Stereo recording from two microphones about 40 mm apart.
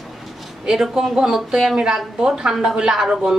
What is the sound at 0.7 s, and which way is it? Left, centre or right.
A woman's voice, centre.